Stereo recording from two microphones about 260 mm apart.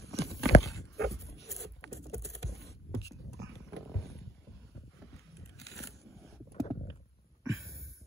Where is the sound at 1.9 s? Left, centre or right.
Centre.